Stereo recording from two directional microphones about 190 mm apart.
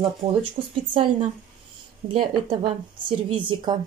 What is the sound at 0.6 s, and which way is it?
A woman's voice, 25° right (ahead or behind).